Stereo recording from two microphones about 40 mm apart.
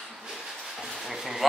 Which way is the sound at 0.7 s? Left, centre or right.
Centre.